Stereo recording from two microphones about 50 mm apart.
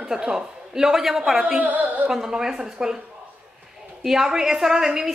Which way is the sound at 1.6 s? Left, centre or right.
Right.